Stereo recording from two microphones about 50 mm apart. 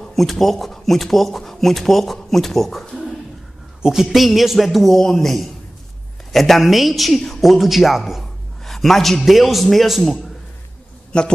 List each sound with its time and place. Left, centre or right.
0.0 s speech: centre
3.8 s a man's voice: centre
11.1 s a man's voice: centre